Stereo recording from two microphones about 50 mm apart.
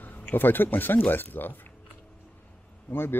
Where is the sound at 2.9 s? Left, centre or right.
Left.